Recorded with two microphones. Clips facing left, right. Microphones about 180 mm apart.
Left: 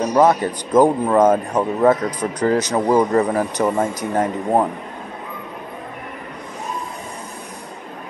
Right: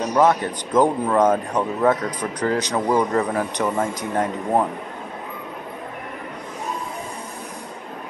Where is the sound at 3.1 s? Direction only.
5° left (ahead or behind).